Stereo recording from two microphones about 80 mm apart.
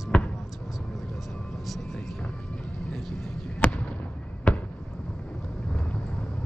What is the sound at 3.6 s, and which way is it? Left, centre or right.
Fireworks, centre.